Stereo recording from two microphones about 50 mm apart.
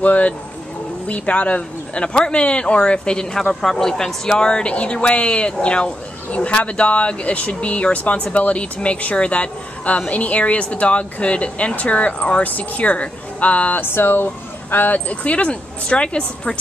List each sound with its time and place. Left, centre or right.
0.0 s speech: left
13.7 s speech: left; by 16.5 s centre